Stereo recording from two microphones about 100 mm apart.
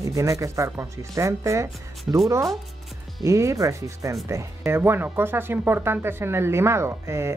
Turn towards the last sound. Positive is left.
turn(degrees=-30)  # may be behind; listen again after turning